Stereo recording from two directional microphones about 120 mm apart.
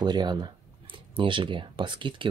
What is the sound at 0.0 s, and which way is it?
Speech, 35° right (ahead or behind).